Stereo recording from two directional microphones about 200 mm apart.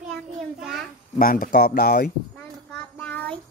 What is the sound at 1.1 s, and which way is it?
Speech, 45° left (ahead or behind).